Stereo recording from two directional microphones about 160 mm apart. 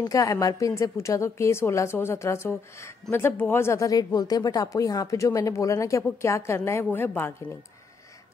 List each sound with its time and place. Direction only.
0.0 s a woman's voice: 20° left (ahead or behind)